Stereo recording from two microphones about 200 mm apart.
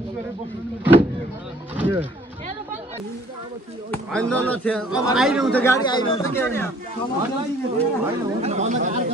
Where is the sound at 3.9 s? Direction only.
5° left (ahead or behind).